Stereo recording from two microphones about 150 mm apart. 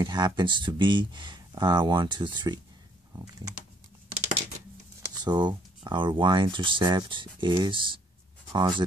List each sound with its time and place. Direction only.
0.0 s speech: 30° right (ahead or behind)
5.0 s speech: 30° right (ahead or behind)